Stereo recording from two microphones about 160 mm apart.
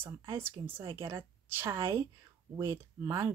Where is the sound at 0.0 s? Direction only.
15° right (ahead or behind).